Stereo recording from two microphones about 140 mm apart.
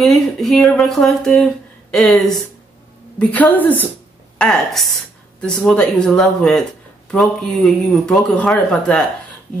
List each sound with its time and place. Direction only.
0.0 s a woman's voice: centre (ahead or behind)